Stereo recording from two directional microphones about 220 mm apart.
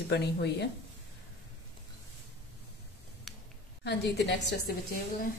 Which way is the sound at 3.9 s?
50° left (ahead or behind).